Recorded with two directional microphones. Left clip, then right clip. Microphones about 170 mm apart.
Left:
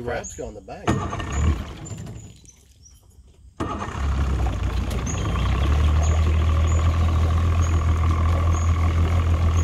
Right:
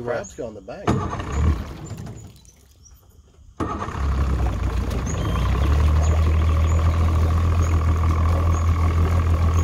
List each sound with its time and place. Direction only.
0.4 s speech: 35° right (ahead or behind)
0.8 s speech: 70° right (ahead or behind)
3.5 s vehicle: 60° right (ahead or behind)